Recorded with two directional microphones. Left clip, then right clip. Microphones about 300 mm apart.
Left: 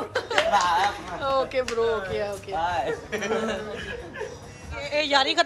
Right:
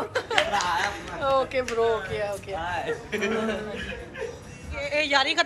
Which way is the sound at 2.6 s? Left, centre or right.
Left.